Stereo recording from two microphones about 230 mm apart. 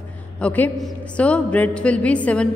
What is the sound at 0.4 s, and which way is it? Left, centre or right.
A man's voice, centre.